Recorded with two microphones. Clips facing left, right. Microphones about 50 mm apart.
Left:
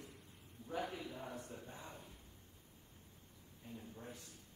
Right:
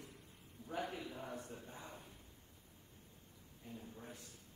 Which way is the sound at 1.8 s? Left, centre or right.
Right.